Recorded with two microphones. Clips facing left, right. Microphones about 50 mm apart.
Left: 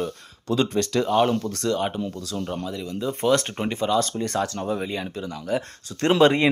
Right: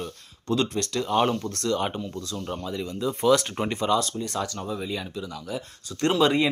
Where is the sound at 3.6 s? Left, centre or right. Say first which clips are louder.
Even; centre.